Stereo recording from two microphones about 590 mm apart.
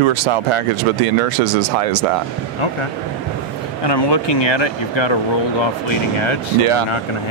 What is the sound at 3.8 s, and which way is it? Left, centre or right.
Speech, left.